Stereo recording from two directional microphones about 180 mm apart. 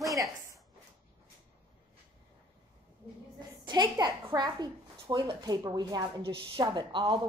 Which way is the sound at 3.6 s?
25° right (ahead or behind).